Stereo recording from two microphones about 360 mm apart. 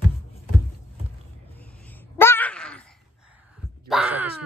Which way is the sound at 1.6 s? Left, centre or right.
Centre.